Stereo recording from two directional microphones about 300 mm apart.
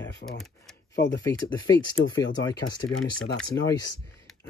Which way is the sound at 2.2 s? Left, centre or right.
Left.